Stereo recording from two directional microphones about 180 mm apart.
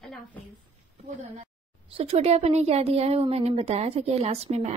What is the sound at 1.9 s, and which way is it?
A woman's voice, 35° right (ahead or behind).